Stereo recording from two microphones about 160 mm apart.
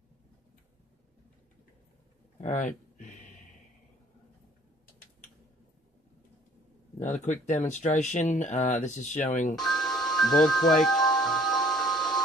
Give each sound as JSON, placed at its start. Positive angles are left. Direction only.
{"t": 2.4, "sound": "a sound", "side_deg": 50}
{"t": 7.0, "sound": "speech", "side_deg": 50}
{"t": 9.6, "sound": "music", "side_deg": 0}